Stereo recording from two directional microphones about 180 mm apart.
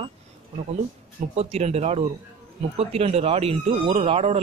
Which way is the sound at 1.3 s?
35° right (ahead or behind).